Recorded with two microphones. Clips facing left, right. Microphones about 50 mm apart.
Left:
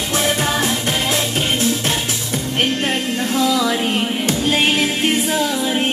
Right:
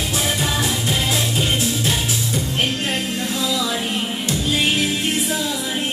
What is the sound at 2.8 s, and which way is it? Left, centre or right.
Music, left.